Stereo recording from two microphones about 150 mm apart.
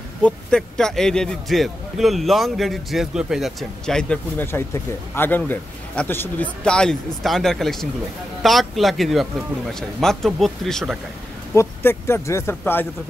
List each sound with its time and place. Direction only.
0.2 s a man's voice: 5° left (ahead or behind)
11.5 s speech: 15° left (ahead or behind)